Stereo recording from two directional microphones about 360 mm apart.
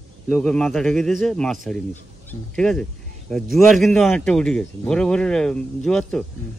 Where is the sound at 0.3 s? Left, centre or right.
Centre.